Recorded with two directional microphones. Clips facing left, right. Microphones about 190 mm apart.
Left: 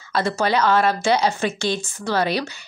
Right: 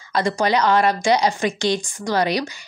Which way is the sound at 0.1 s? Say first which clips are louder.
Right 1 dB; 15° right (ahead or behind).